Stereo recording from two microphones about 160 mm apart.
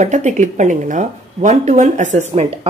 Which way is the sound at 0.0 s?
45° right (ahead or behind).